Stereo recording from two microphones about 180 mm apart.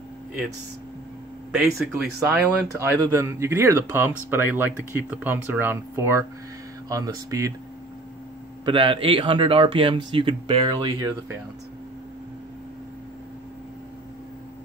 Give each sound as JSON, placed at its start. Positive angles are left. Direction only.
{"t": 1.5, "sound": "speech", "side_deg": -5}
{"t": 8.6, "sound": "speech", "side_deg": -25}